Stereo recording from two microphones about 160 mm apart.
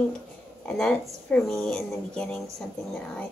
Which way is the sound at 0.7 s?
5° left (ahead or behind).